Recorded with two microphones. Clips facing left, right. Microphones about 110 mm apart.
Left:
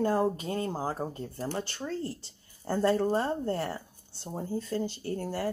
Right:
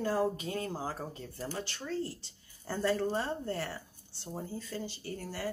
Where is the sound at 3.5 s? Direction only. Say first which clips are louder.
Left 5 dB; 30° left (ahead or behind).